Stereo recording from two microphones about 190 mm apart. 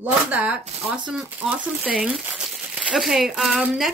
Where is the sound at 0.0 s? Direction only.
5° right (ahead or behind).